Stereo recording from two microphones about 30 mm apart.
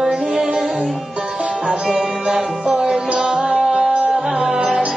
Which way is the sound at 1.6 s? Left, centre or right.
Centre.